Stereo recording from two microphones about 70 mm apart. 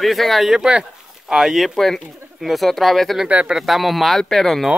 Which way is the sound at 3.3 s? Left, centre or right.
Right.